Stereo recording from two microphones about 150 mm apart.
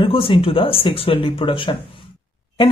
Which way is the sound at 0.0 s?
35° left (ahead or behind).